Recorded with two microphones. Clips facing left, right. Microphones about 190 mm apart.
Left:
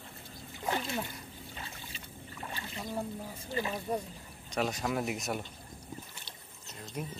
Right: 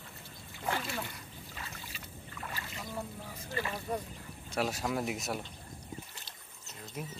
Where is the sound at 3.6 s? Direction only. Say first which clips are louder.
Left 2 dB; 15° left (ahead or behind).